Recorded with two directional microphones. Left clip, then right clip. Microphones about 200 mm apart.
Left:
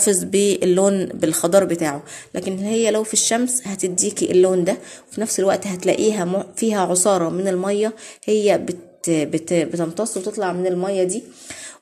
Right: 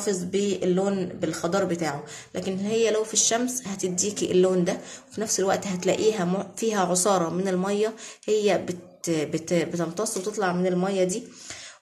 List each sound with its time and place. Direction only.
0.0 s speech: 45° left (ahead or behind); by 11.1 s 25° left (ahead or behind)